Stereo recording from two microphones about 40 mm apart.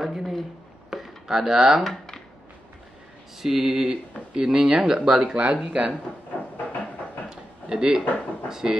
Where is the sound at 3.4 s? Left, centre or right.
Centre.